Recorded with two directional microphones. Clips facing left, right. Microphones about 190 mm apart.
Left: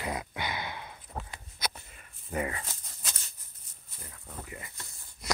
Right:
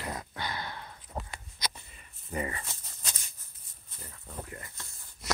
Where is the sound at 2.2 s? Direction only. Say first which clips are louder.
Left 2 dB; 5° left (ahead or behind).